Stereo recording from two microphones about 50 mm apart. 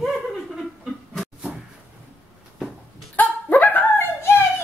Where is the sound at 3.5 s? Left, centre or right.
Left.